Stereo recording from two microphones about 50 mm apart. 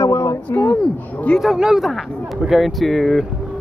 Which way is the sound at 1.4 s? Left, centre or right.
Centre.